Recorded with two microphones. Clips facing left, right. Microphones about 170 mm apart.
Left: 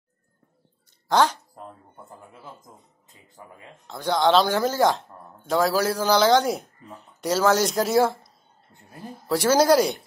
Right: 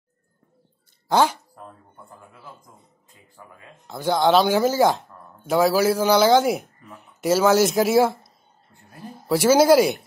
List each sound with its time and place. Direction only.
1.1 s speech: 10° right (ahead or behind)
1.5 s a sound: 20° left (ahead or behind)
3.8 s speech: 5° right (ahead or behind)
9.3 s speech: 5° right (ahead or behind)